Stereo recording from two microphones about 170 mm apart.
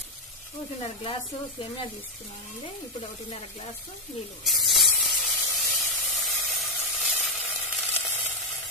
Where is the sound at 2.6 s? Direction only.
30° left (ahead or behind).